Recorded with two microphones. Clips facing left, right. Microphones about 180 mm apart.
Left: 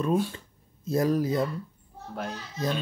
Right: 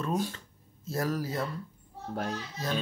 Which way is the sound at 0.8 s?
20° left (ahead or behind).